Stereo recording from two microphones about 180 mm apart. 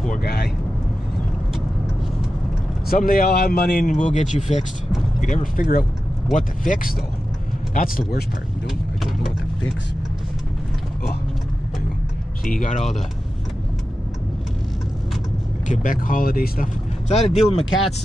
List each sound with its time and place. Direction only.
0.1 s speech: 60° left (ahead or behind)
2.9 s speech: 55° left (ahead or behind)
12.4 s speech: 45° left (ahead or behind)
15.7 s speech: 50° left (ahead or behind)
17.1 s speech: 35° left (ahead or behind)